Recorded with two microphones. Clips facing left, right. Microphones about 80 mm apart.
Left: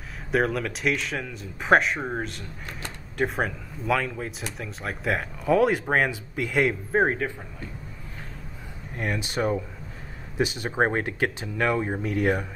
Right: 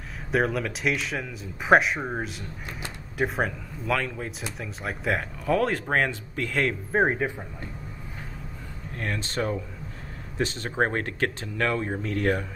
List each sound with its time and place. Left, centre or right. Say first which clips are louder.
0.3 s speech: left 1 dB; centre
6.9 s speech: right 2 dB; centre
7.2 s speech: right 1 dB; centre
8.9 s speech: left 2 dB; centre